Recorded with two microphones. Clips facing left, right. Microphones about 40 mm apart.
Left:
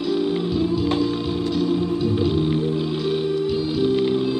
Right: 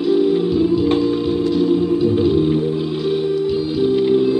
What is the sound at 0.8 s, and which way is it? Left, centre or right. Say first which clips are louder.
Music: right 5 dB; right.